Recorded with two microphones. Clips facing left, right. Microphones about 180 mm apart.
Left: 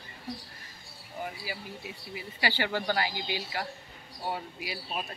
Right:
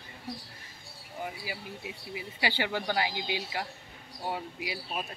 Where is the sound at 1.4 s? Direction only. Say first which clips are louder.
Even; 15° right (ahead or behind).